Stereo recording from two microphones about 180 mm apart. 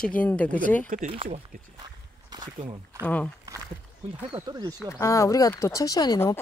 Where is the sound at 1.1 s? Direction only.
30° right (ahead or behind).